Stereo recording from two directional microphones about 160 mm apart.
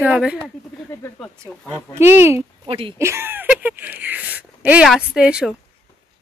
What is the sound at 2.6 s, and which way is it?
Speech, 35° right (ahead or behind).